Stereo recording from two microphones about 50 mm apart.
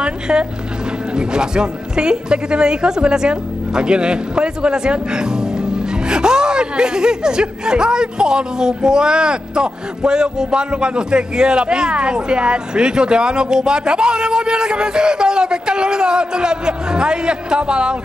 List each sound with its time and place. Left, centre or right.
0.0 s a man's voice: centre